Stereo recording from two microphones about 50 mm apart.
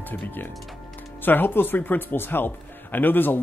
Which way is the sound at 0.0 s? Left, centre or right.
Left.